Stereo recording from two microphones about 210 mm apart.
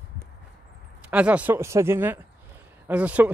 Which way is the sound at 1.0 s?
5° right (ahead or behind).